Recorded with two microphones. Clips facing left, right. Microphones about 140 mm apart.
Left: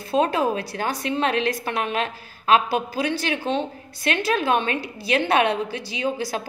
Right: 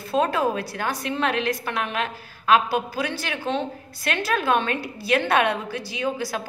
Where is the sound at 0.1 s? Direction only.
20° left (ahead or behind).